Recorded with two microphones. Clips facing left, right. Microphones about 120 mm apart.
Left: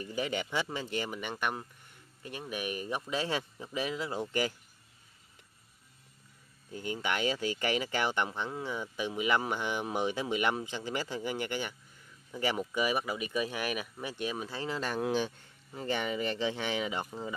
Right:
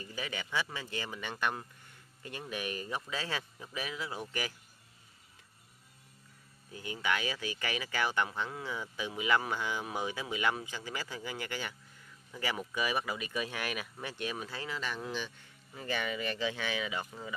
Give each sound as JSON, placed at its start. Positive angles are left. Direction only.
{"t": 0.1, "sound": "speech", "side_deg": 25}
{"t": 6.7, "sound": "speech", "side_deg": 25}
{"t": 14.7, "sound": "a man's voice", "side_deg": 40}
{"t": 15.7, "sound": "speech", "side_deg": 25}